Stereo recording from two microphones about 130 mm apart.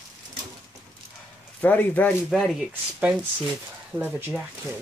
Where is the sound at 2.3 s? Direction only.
Centre (ahead or behind).